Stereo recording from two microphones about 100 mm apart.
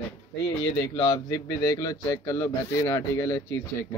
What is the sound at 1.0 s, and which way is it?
Speech, 40° left (ahead or behind).